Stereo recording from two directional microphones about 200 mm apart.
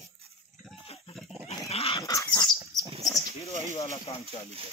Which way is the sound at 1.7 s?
30° left (ahead or behind).